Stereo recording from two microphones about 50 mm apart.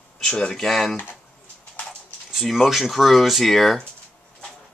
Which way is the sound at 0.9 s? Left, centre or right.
Left.